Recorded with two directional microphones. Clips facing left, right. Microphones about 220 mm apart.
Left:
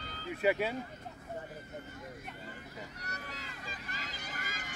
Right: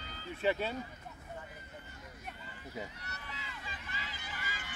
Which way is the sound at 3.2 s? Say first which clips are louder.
Left 2 dB; 40° left (ahead or behind).